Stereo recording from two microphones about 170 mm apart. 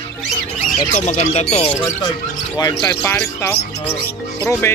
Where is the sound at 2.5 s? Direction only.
15° left (ahead or behind).